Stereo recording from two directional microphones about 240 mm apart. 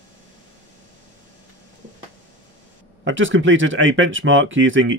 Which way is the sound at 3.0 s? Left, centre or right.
Right.